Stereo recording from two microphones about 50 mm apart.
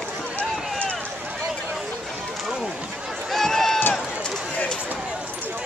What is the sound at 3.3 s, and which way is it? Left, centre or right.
Run, centre.